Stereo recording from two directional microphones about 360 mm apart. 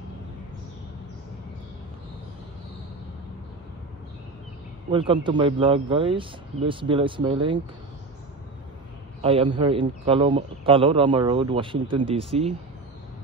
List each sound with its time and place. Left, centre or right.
4.9 s a man's voice: centre
9.2 s a man's voice: centre